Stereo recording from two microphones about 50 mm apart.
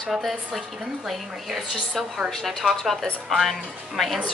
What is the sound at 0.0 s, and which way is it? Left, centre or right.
A woman's voice, centre.